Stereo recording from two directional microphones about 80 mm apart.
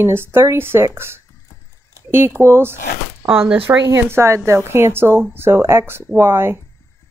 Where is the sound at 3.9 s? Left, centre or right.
Right.